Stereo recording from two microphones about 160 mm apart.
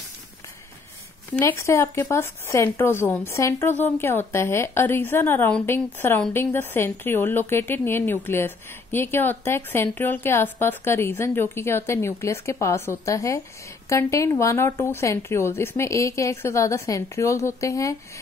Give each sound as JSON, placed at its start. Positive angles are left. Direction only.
{"t": 1.3, "sound": "a woman's voice", "side_deg": 15}